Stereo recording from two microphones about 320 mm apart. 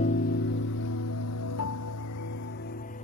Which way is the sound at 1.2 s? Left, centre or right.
Left.